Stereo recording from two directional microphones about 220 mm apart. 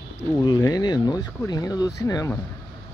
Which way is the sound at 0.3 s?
20° left (ahead or behind).